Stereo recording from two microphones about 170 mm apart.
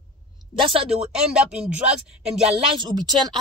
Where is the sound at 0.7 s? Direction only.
35° right (ahead or behind).